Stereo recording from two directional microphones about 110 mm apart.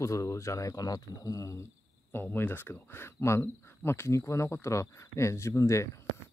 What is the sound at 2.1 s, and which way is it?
Speech, 20° left (ahead or behind).